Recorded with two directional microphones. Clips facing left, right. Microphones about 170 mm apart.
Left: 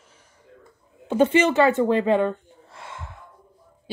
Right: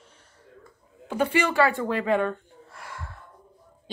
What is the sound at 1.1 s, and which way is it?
Speech, 25° left (ahead or behind).